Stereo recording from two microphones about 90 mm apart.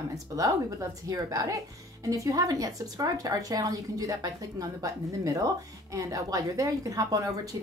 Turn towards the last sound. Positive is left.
turn(degrees=-40)  # may be behind; listen again after turning